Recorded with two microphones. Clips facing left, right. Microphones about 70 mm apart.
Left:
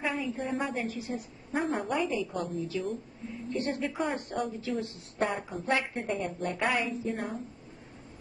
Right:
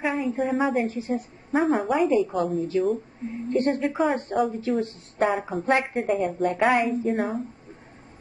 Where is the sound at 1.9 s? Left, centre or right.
Right.